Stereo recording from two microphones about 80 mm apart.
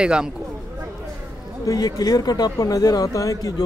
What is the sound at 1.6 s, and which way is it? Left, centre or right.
Speech, left.